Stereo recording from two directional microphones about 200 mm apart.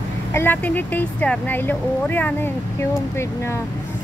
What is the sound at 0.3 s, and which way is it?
Speech, 10° left (ahead or behind).